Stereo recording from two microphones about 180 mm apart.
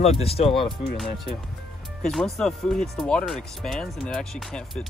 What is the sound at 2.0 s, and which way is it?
Speech, centre (ahead or behind).